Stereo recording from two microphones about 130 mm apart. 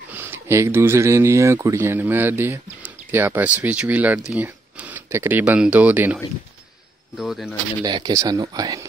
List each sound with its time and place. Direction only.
0.1 s speech: 15° right (ahead or behind)
7.2 s speech: centre (ahead or behind)
7.8 s speech: 35° right (ahead or behind)